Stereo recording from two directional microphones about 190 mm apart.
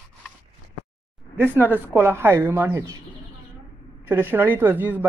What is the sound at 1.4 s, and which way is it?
Speech, 10° right (ahead or behind).